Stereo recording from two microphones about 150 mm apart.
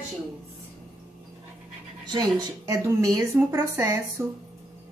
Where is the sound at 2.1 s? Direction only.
25° right (ahead or behind).